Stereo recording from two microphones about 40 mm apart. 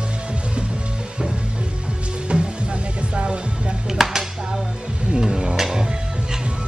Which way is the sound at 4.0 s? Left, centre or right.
Centre.